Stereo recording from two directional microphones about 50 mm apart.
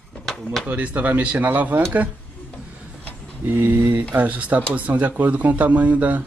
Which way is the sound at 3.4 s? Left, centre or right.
Right.